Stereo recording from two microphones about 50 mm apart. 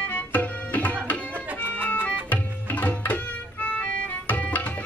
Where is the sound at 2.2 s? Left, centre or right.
Left.